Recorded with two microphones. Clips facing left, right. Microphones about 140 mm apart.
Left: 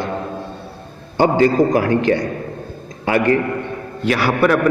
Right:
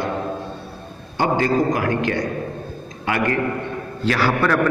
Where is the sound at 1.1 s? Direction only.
30° left (ahead or behind).